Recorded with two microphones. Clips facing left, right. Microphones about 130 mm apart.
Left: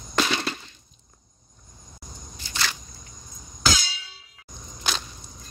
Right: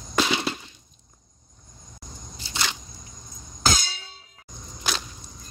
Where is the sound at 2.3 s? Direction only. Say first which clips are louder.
Right 1 dB; 30° right (ahead or behind).